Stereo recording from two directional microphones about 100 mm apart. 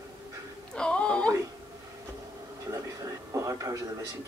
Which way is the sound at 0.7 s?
10° left (ahead or behind).